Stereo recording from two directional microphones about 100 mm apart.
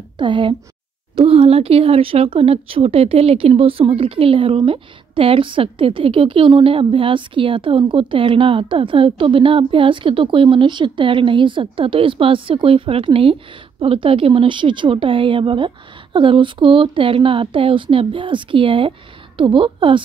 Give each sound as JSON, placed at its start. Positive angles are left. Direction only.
{"t": 0.2, "sound": "speech", "side_deg": -55}
{"t": 1.2, "sound": "speech", "side_deg": -75}